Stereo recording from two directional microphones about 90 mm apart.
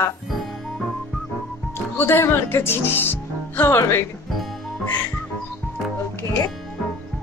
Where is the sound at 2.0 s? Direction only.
25° left (ahead or behind).